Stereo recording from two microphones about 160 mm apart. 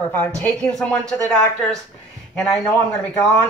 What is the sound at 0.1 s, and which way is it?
A man's voice, 10° left (ahead or behind).